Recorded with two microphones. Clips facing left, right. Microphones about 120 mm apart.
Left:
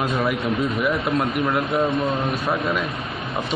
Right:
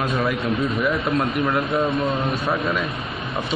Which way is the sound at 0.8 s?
5° left (ahead or behind).